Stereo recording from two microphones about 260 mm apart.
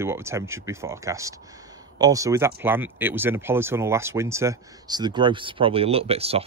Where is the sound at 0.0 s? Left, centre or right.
Centre.